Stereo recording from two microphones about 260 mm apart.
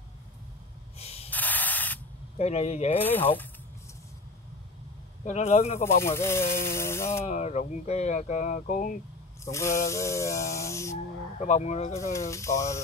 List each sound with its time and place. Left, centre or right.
0.9 s spray: left
1.3 s spray: centre
2.3 s speech: left
3.0 s spray: centre
5.2 s speech: left
5.9 s spray: centre
7.2 s speech: left
9.4 s spray: centre
11.3 s speech: left
12.1 s spray: centre